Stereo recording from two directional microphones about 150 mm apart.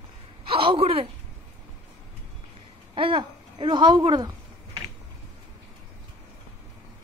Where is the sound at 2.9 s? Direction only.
35° right (ahead or behind).